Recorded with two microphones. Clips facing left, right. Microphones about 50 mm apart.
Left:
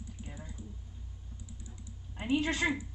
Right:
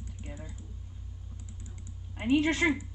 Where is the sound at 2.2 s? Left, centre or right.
Right.